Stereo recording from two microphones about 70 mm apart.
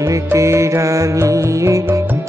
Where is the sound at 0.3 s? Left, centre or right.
Right.